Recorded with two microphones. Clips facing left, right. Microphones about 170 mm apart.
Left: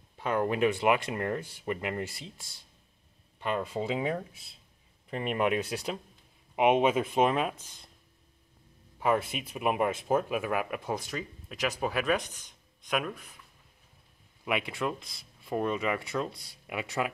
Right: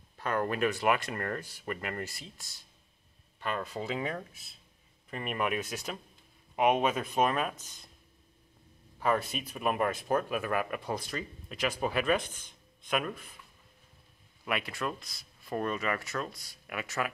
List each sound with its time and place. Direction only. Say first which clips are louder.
0.2 s speech: left 3 dB; 15° left (ahead or behind)
6.5 s speech: left 3 dB; 20° left (ahead or behind)
9.0 s speech: left 2 dB; 15° left (ahead or behind)
12.2 s a sound: right 1 dB; 15° left (ahead or behind)
12.9 s speech: left 1 dB; centre (ahead or behind)
14.4 s speech: left 3 dB; 15° left (ahead or behind)
16.3 s speech: left 3 dB; 30° left (ahead or behind)